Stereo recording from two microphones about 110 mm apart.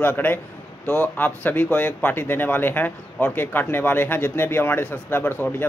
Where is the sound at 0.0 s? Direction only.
20° left (ahead or behind).